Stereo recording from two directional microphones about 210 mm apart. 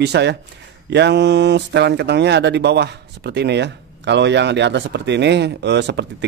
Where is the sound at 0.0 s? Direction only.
55° right (ahead or behind).